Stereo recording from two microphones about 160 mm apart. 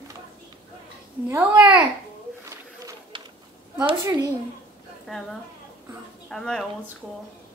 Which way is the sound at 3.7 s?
25° right (ahead or behind).